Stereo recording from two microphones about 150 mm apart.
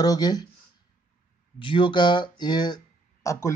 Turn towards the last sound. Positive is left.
turn(degrees=20)  # may be behind; listen again after turning